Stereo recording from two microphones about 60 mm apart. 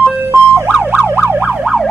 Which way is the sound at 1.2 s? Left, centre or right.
Right.